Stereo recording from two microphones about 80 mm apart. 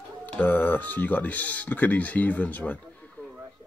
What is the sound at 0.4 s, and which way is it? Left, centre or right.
Speech, left.